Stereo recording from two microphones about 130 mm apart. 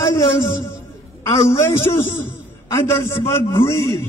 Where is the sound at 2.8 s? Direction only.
20° left (ahead or behind).